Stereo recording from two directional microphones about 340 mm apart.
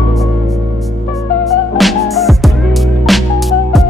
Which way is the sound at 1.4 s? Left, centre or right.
Centre.